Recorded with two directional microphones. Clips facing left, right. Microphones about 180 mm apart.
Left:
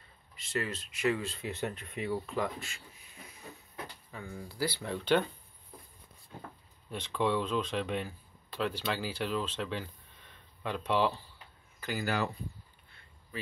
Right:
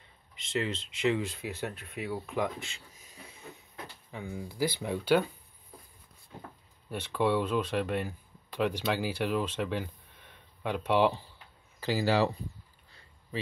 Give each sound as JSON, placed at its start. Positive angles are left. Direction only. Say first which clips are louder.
{"t": 0.4, "sound": "speech", "louder": "right 3 dB", "side_deg": -20}
{"t": 4.1, "sound": "speech", "louder": "right 4 dB", "side_deg": -15}
{"t": 6.9, "sound": "speech", "louder": "right 3 dB", "side_deg": -10}
{"t": 11.8, "sound": "speech", "louder": "right 6 dB", "side_deg": -30}